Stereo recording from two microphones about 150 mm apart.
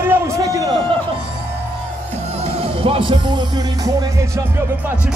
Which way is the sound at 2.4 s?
40° right (ahead or behind).